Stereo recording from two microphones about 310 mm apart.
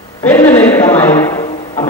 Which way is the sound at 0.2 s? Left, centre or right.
Centre.